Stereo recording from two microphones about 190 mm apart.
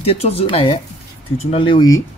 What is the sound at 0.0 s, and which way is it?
Speech, 30° left (ahead or behind).